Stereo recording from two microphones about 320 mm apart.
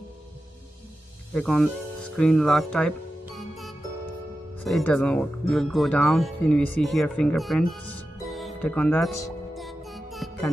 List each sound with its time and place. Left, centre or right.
1.3 s speech: centre
3.3 s music: centre
4.6 s speech: centre
8.2 s music: centre